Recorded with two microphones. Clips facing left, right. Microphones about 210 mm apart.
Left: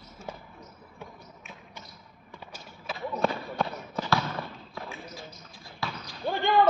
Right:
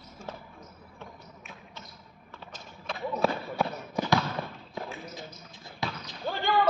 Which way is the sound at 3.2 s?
5° right (ahead or behind).